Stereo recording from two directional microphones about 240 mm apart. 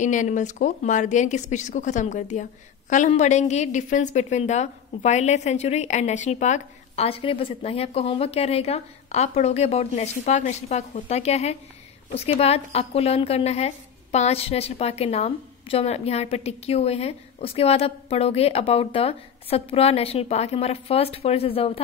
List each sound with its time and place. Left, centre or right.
0.0 s a woman's voice: left